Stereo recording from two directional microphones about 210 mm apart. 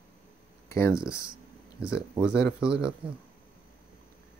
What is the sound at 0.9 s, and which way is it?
Speech, 5° right (ahead or behind).